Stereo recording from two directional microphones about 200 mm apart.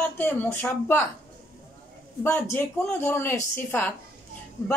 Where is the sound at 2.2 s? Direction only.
10° left (ahead or behind).